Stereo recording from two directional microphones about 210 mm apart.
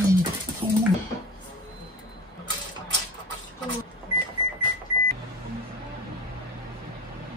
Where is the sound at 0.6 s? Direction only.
25° right (ahead or behind).